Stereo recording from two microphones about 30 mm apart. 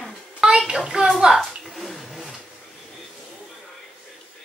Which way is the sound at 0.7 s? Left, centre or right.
Right.